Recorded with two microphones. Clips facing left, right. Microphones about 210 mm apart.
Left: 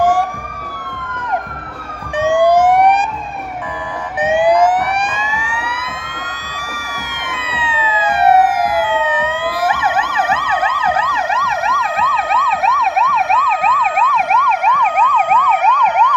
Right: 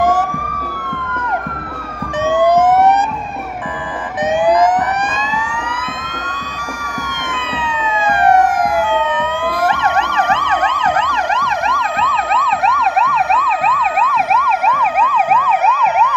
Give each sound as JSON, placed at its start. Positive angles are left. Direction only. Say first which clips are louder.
{"t": 2.2, "sound": "emergency vehicle", "louder": "left 1 dB", "side_deg": 10}
{"t": 4.2, "sound": "emergency vehicle", "louder": "left 1 dB", "side_deg": 10}
{"t": 7.4, "sound": "emergency vehicle", "louder": "even", "side_deg": 5}